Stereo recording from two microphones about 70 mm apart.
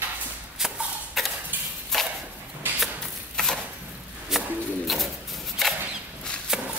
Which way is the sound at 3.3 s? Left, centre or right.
Centre.